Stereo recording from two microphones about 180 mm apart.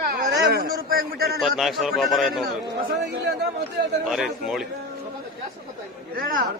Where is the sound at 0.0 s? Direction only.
55° right (ahead or behind).